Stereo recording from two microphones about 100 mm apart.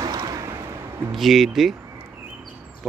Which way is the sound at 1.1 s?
Centre (ahead or behind).